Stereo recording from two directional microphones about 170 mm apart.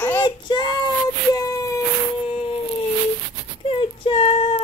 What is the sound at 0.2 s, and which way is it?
Child singing, 25° left (ahead or behind).